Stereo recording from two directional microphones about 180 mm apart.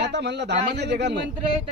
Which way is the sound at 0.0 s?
70° right (ahead or behind).